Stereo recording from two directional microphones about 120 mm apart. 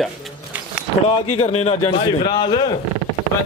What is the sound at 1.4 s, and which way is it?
Speech, 60° left (ahead or behind).